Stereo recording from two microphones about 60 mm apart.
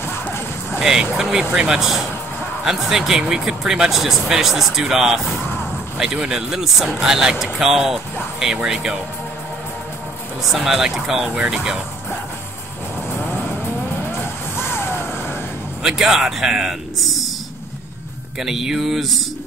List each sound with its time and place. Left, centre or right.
0.0 s music: left
0.7 s speech: centre
10.5 s speech: centre
14.6 s vehicle: left
15.8 s speech: centre
18.4 s speech: centre